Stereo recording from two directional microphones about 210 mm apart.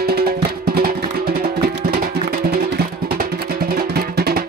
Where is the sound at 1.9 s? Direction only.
45° right (ahead or behind).